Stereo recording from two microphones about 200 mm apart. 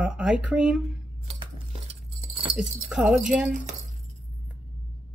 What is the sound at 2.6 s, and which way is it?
Speech, 5° right (ahead or behind).